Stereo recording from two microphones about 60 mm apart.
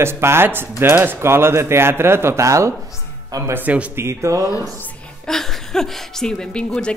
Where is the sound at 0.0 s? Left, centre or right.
Right.